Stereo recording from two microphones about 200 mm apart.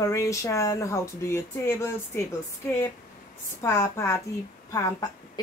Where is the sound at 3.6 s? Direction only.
15° left (ahead or behind).